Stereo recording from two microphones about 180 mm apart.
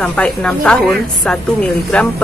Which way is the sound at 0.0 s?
5° left (ahead or behind).